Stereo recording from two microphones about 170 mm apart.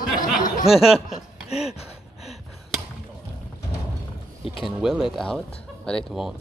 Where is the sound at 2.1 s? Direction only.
Centre (ahead or behind).